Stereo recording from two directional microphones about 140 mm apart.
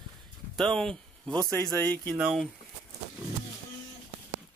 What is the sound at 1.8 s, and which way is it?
Speech, 10° left (ahead or behind).